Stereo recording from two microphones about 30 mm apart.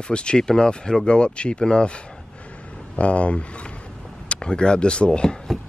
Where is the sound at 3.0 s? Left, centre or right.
Left.